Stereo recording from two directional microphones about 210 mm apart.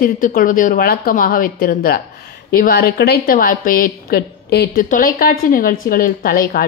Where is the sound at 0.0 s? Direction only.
40° left (ahead or behind).